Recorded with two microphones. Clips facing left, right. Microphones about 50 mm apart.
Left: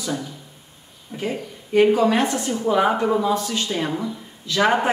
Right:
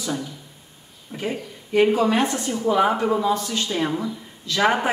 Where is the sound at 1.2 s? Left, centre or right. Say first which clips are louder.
Left 1 dB; centre.